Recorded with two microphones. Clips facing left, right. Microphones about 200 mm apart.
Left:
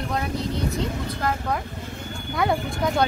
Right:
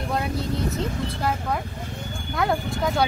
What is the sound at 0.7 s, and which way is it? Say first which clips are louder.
Vehicle: even; centre (ahead or behind).